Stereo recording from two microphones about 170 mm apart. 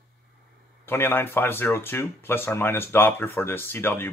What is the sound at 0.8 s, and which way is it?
Speech, 15° left (ahead or behind).